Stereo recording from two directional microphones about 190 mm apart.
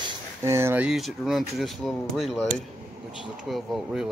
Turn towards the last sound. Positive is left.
turn(degrees=0)  # may be behind; listen again after turning